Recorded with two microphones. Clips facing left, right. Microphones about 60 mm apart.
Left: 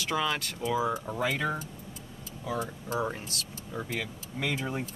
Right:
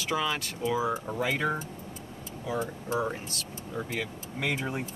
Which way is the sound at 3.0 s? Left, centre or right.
Centre.